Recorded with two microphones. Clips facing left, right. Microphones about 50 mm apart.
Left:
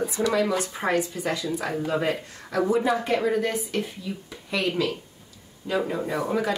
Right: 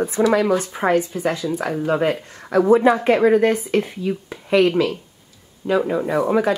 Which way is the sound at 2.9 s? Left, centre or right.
Right.